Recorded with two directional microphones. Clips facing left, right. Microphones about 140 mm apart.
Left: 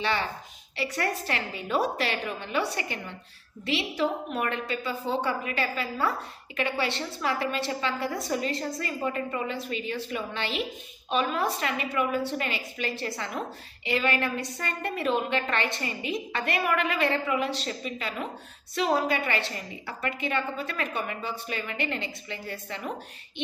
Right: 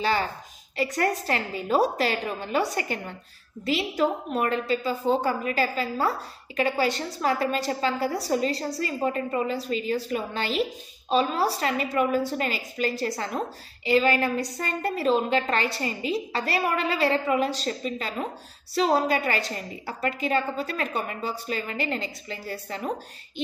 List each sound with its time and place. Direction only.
0.0 s a woman's voice: 35° right (ahead or behind)